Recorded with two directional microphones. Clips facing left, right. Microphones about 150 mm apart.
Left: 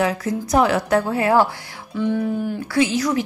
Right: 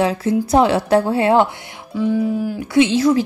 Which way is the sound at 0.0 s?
25° right (ahead or behind).